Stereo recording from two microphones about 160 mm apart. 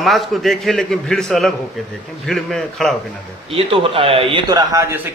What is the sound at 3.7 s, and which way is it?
Speech, 35° right (ahead or behind).